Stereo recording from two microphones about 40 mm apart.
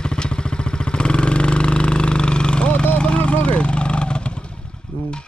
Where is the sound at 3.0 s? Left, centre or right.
Left.